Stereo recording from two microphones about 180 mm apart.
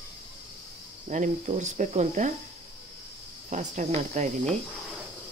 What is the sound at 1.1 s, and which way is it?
Speech, 40° right (ahead or behind).